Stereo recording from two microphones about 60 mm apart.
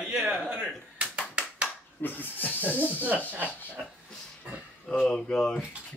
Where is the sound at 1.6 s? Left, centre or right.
Left.